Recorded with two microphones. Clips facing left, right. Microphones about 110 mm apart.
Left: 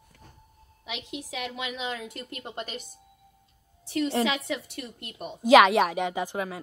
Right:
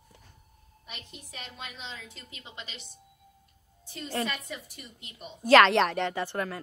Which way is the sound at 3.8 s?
70° left (ahead or behind).